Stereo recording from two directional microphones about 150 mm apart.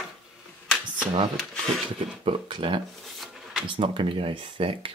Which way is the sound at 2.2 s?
35° right (ahead or behind).